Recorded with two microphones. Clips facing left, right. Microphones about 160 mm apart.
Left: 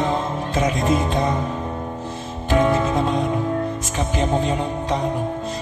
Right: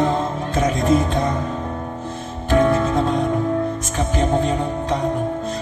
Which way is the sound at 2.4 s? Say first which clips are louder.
Right 2 dB; 20° left (ahead or behind).